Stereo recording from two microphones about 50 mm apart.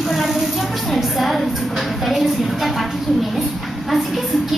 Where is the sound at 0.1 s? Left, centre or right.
Centre.